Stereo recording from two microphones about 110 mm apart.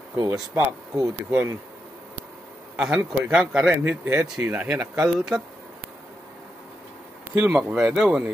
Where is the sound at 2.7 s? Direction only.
10° right (ahead or behind).